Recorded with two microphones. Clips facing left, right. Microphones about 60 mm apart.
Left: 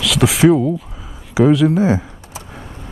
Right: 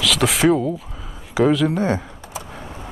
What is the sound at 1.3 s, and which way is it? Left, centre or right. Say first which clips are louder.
Speech: left 4 dB; centre.